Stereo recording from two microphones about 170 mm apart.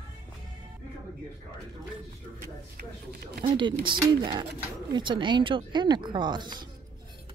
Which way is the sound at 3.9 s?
30° right (ahead or behind).